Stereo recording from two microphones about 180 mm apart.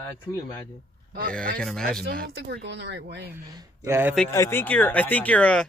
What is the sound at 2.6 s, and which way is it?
Speech, 70° right (ahead or behind).